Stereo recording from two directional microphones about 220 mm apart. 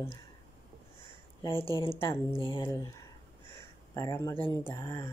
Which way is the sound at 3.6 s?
15° left (ahead or behind).